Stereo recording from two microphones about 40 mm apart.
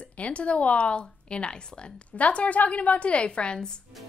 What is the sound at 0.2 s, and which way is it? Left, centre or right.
A woman's voice, left.